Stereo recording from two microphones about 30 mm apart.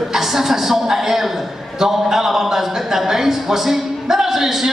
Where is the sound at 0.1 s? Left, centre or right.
Centre.